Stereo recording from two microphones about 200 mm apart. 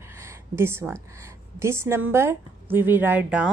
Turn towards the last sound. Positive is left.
turn(degrees=-5)  # may be behind; listen again after turning